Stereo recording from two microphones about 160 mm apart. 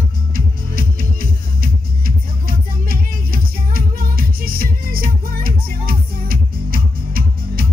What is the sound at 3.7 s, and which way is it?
Music, 65° right (ahead or behind).